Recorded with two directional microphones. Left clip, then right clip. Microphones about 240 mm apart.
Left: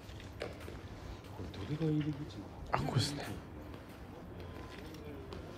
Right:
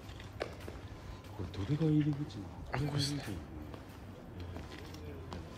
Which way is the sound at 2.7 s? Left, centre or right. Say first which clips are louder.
Left 2 dB; left.